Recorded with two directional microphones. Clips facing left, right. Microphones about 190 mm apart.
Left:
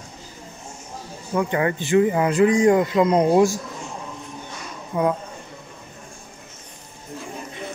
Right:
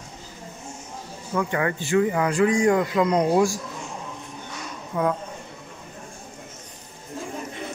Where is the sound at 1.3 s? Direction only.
25° left (ahead or behind).